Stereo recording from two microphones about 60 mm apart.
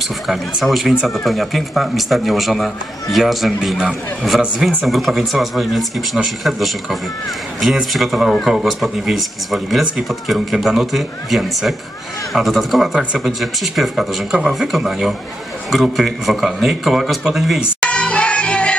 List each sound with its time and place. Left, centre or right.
0.7 s speech: centre
17.7 s music: centre